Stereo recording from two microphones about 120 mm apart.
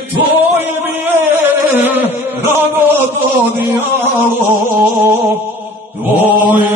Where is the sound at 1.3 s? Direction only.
15° right (ahead or behind).